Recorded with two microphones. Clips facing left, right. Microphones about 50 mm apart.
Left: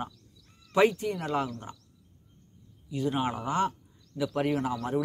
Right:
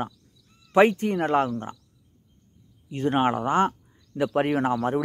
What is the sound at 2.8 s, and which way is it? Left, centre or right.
Speech, right.